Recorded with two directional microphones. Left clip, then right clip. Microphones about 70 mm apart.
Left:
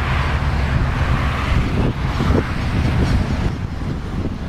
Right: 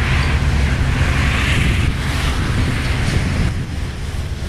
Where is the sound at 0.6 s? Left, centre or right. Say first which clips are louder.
Right 2 dB; right.